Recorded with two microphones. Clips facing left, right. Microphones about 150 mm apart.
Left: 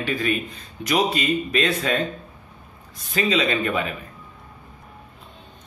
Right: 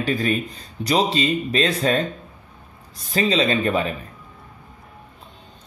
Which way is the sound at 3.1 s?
30° right (ahead or behind).